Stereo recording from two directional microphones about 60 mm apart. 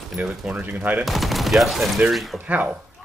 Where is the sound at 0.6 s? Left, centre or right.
Right.